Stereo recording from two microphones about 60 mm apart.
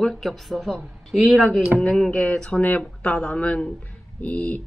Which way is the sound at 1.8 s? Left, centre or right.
Centre.